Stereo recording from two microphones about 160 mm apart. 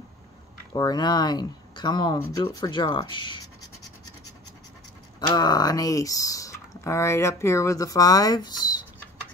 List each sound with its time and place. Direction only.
0.7 s speech: 25° left (ahead or behind)
5.2 s speech: 25° left (ahead or behind)